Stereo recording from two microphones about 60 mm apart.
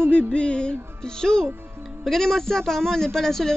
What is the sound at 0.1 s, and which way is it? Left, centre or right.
A man's voice, centre.